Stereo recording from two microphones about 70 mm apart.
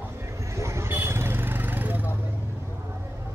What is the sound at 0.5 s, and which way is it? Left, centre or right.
Vehicle, right.